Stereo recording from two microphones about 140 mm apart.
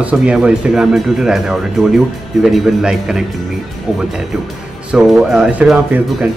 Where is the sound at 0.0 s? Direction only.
10° right (ahead or behind).